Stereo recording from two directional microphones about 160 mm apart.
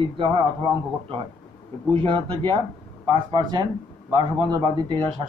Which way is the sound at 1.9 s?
30° right (ahead or behind).